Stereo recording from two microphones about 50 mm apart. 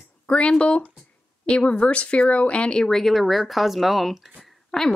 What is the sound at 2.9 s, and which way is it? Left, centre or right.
Speech, centre.